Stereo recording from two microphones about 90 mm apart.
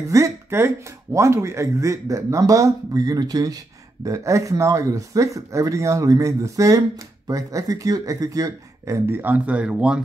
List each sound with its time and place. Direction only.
0.1 s speech: 35° right (ahead or behind); by 10.0 s 10° right (ahead or behind)